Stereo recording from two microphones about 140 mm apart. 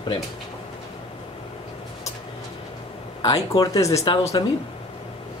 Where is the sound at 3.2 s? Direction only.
25° left (ahead or behind).